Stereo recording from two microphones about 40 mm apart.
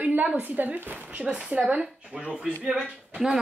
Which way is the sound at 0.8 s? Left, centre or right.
Right.